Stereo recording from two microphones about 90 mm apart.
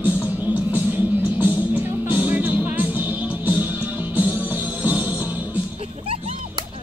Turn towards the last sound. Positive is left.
turn(degrees=-20)  # may be behind; listen again after turning